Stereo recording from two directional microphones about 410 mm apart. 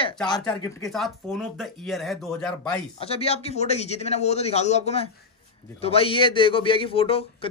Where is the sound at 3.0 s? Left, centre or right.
Centre.